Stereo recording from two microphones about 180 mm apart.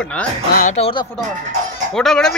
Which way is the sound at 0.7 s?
30° left (ahead or behind).